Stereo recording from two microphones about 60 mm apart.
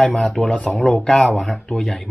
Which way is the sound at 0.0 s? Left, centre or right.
Centre.